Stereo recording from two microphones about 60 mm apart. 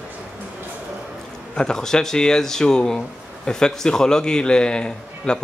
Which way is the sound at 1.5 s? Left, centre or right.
Centre.